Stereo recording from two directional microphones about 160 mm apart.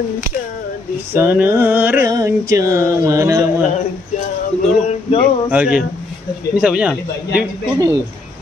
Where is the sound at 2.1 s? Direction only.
20° right (ahead or behind).